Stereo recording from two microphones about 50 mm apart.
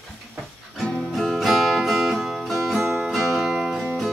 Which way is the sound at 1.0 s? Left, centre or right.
Centre.